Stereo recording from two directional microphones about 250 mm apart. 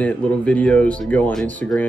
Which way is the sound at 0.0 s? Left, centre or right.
Centre.